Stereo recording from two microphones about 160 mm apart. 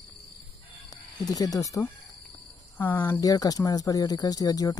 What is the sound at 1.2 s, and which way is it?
Speech, 20° left (ahead or behind).